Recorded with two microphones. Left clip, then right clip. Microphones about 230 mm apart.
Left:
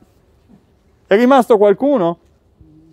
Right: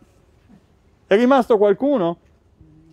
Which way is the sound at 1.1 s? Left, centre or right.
Centre.